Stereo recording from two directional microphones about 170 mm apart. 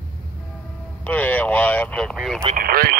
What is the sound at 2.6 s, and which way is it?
Speech, 60° right (ahead or behind).